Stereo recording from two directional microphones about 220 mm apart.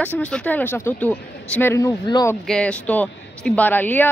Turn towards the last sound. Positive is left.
turn(degrees=10)  # may be behind; listen again after turning